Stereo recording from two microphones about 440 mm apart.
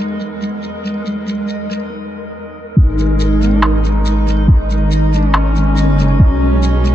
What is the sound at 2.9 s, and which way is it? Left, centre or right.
Music, left.